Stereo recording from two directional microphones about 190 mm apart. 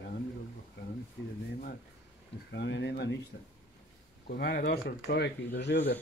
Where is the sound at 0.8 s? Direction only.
65° left (ahead or behind).